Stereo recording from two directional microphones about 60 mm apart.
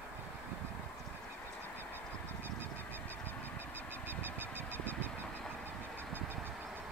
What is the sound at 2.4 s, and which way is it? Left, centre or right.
Goose, right.